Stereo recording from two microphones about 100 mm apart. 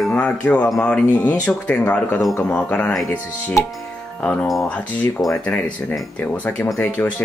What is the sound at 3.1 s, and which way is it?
Speech, 25° left (ahead or behind).